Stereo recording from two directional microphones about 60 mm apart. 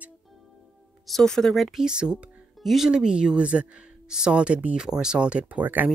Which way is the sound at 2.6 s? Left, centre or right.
Centre.